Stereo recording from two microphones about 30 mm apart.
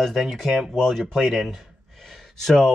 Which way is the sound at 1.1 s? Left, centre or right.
Centre.